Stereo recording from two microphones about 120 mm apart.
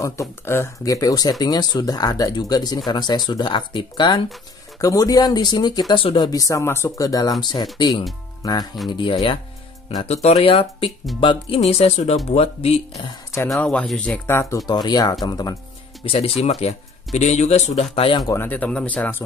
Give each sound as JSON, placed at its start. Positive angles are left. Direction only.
{"t": 0.0, "sound": "speech", "side_deg": 25}
{"t": 10.0, "sound": "speech", "side_deg": 60}
{"t": 10.5, "sound": "speech", "side_deg": 50}
{"t": 11.6, "sound": "speech", "side_deg": 65}
{"t": 13.6, "sound": "speech", "side_deg": 10}
{"t": 14.7, "sound": "speech", "side_deg": 35}
{"t": 16.1, "sound": "speech", "side_deg": 60}
{"t": 17.9, "sound": "speech", "side_deg": 50}
{"t": 18.2, "sound": "speech", "side_deg": 20}